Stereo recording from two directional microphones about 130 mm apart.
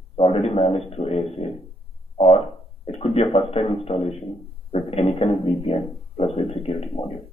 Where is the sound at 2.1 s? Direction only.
50° left (ahead or behind).